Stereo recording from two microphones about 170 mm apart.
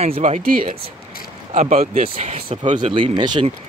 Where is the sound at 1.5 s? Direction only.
40° right (ahead or behind).